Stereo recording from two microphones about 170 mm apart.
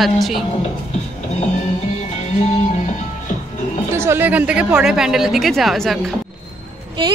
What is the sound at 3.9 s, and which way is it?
A woman's voice, 15° right (ahead or behind).